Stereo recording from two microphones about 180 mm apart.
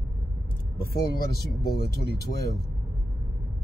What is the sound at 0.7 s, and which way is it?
Speech, 60° left (ahead or behind).